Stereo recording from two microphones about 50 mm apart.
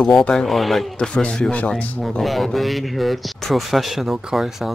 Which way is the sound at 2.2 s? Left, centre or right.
Centre.